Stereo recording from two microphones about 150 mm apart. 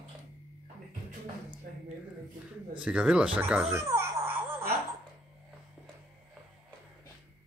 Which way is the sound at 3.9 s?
15° right (ahead or behind).